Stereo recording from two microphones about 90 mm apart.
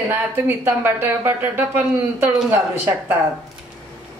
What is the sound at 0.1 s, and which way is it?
A woman's voice, 20° right (ahead or behind).